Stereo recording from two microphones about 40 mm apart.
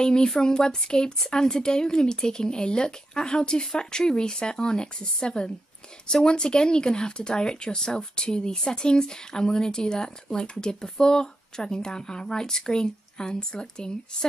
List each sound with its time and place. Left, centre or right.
0.0 s speech: centre